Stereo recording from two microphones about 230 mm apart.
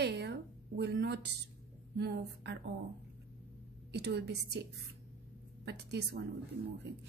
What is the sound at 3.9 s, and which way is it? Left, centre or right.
Speech, right.